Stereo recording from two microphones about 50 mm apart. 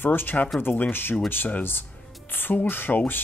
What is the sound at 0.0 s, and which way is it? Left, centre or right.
Speech, left.